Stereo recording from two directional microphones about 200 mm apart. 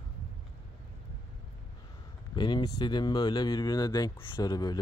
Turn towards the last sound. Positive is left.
turn(degrees=20)  # may be behind; listen again after turning